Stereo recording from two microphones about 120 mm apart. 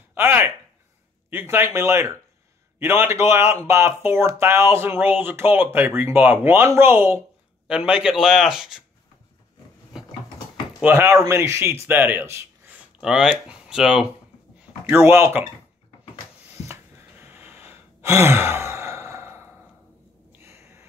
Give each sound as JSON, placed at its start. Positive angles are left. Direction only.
{"t": 0.1, "sound": "a sound", "side_deg": -20}
{"t": 1.3, "sound": "speech", "side_deg": -20}
{"t": 7.6, "sound": "a man's voice", "side_deg": -5}
{"t": 9.9, "sound": "mechanisms", "side_deg": -5}
{"t": 10.8, "sound": "speech", "side_deg": -20}
{"t": 13.0, "sound": "speech", "side_deg": -5}
{"t": 14.9, "sound": "speech", "side_deg": -20}
{"t": 16.5, "sound": "gasp", "side_deg": -20}
{"t": 20.3, "sound": "a sound", "side_deg": -20}